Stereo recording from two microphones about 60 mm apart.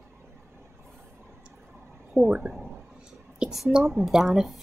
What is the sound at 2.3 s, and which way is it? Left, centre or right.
Speech, centre.